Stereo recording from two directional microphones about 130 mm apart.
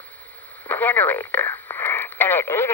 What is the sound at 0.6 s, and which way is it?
Speech, 15° left (ahead or behind).